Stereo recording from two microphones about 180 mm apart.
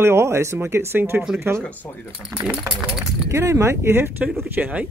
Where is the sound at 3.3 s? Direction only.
15° right (ahead or behind).